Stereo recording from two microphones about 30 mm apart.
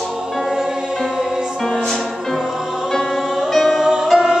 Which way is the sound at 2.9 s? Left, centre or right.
Centre.